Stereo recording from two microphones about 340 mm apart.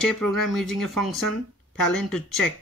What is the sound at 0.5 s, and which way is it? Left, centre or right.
Speech, centre.